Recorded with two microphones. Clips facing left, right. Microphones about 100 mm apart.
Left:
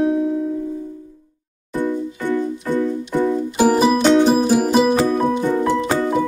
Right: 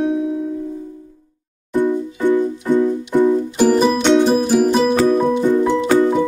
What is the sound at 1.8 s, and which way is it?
Music, 20° right (ahead or behind).